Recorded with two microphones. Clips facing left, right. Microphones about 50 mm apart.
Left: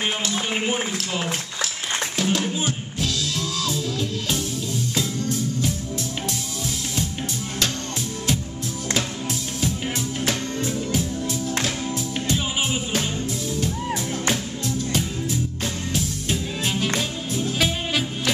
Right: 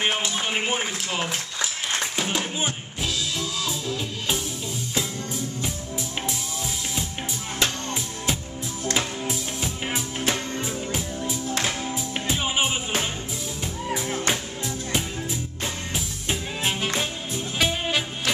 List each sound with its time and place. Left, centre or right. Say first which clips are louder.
0.0 s speech: even; centre
2.1 s music: left 3 dB; centre
8.9 s music: left 1 dB; centre
17.3 s music: left 3 dB; centre